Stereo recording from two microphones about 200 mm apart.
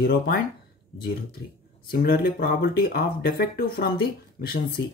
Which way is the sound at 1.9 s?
50° left (ahead or behind).